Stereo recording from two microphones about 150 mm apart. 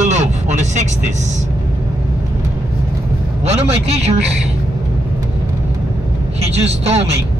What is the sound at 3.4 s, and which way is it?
Speech, 45° right (ahead or behind).